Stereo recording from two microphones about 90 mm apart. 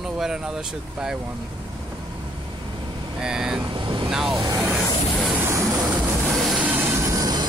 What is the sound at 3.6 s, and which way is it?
Vehicle, 65° right (ahead or behind).